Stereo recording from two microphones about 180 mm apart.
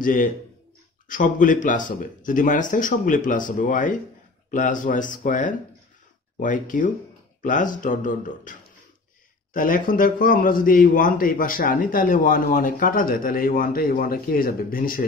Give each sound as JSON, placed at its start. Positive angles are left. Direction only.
{"t": 0.0, "sound": "a man's voice", "side_deg": 50}